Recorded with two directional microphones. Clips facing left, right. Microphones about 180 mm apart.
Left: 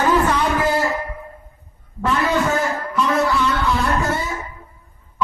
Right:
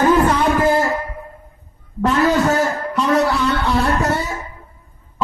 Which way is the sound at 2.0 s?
40° right (ahead or behind).